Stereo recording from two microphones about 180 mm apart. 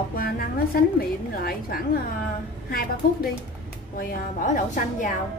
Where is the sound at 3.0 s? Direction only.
55° left (ahead or behind).